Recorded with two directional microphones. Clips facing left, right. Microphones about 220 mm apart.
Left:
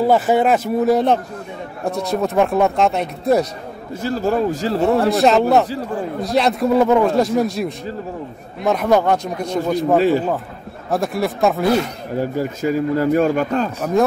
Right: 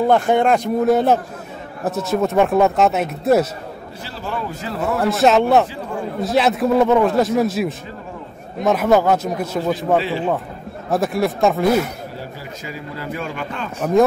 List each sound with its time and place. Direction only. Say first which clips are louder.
0.0 s a man's voice: even; 5° left (ahead or behind)
4.0 s speech: left 10 dB; 45° left (ahead or behind)
4.6 s speech: left 3 dB; 30° left (ahead or behind)
5.1 s a man's voice: even; centre (ahead or behind)
9.9 s speech: left 5 dB; 45° left (ahead or behind)
10.9 s a man's voice: right 1 dB; centre (ahead or behind)
12.2 s speech: left 12 dB; 45° left (ahead or behind)